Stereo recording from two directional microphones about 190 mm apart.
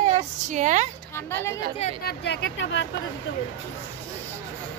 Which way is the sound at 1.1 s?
10° left (ahead or behind).